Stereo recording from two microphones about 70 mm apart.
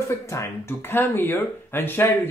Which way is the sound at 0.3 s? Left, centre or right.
Left.